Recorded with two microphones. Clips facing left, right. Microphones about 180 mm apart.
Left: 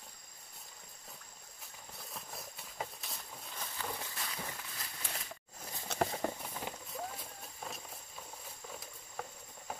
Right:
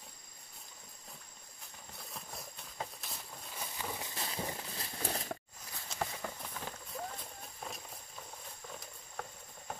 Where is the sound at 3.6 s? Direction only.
10° right (ahead or behind).